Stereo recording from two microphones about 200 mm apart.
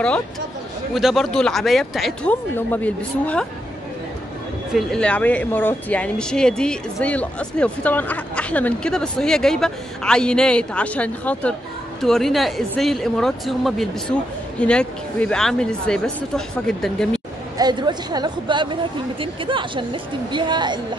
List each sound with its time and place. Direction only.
0.9 s speech: centre (ahead or behind)
4.7 s speech: 5° left (ahead or behind)
17.6 s a woman's voice: 20° right (ahead or behind)